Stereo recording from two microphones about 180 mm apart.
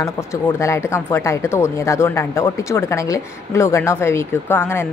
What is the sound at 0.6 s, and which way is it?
A woman's voice, 15° left (ahead or behind).